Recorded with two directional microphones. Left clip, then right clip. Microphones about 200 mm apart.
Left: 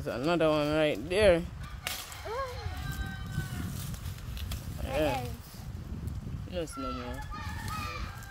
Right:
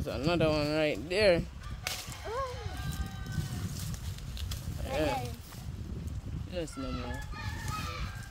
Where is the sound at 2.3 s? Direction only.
15° right (ahead or behind).